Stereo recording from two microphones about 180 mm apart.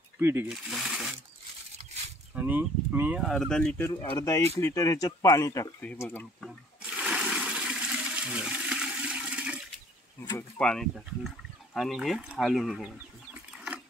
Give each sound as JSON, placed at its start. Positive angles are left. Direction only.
{"t": 0.2, "sound": "speech", "side_deg": -10}
{"t": 2.3, "sound": "speech", "side_deg": -10}
{"t": 6.4, "sound": "toilet flush", "side_deg": -5}
{"t": 10.6, "sound": "speech", "side_deg": 5}